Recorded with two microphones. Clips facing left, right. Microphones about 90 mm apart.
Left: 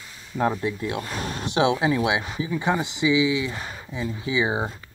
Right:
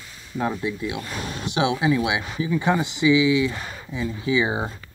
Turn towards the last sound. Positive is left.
turn(degrees=20)  # may be behind; listen again after turning